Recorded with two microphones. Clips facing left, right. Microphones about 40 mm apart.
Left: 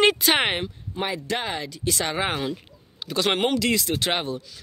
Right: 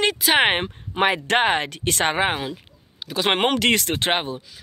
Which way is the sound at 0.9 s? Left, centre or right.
Right.